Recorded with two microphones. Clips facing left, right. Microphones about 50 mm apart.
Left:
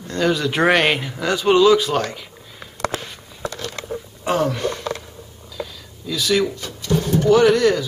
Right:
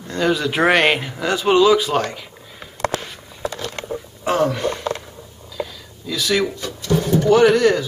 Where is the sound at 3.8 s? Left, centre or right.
Centre.